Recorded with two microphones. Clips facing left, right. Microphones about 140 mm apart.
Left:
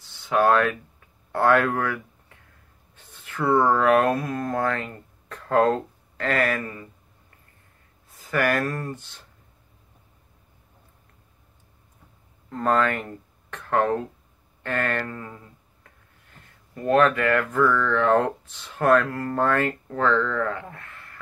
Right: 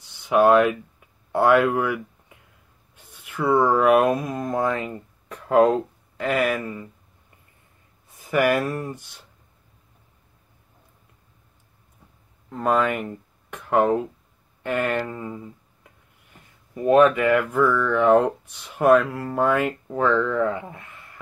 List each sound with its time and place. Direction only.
0.0 s speech: 15° right (ahead or behind)
8.2 s speech: 15° right (ahead or behind)
12.4 s speech: 5° right (ahead or behind)